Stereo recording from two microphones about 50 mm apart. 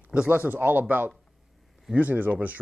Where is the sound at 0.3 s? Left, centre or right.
Right.